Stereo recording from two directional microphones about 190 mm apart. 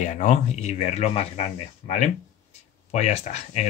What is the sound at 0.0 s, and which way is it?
Speech, 40° left (ahead or behind).